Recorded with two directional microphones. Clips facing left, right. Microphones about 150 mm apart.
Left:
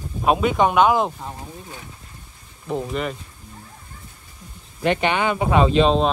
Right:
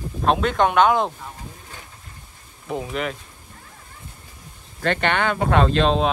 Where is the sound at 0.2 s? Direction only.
10° left (ahead or behind).